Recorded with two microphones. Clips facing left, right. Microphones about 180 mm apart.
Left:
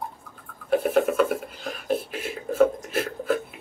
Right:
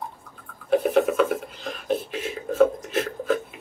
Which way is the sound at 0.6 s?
5° left (ahead or behind).